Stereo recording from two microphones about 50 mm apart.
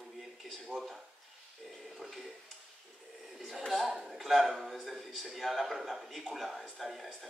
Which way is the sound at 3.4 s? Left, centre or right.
Centre.